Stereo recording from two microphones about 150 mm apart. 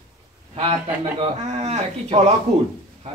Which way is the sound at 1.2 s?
40° right (ahead or behind).